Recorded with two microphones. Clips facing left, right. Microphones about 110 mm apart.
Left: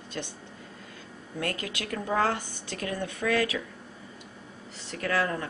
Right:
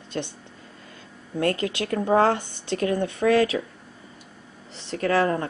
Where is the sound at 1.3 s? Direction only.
30° right (ahead or behind).